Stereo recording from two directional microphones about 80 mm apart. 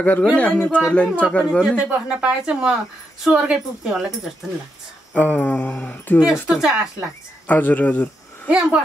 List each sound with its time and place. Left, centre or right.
0.0 s speech: centre
1.8 s a woman's voice: centre
5.1 s speech: left
6.1 s a woman's voice: centre
7.4 s speech: left
8.5 s a woman's voice: centre